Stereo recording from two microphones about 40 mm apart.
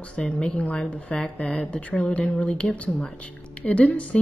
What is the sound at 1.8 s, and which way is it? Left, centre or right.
Speech, left.